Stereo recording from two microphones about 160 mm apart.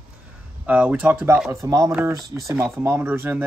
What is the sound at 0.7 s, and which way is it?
Speech, 10° right (ahead or behind).